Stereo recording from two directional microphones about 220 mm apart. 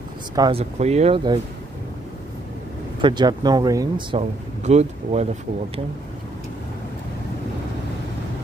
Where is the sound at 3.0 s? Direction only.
20° right (ahead or behind).